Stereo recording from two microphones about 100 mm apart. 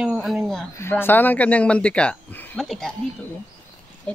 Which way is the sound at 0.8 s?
25° left (ahead or behind).